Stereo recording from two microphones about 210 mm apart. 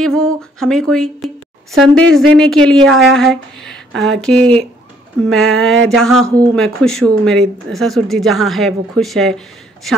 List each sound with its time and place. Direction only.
0.0 s a woman's voice: 5° left (ahead or behind)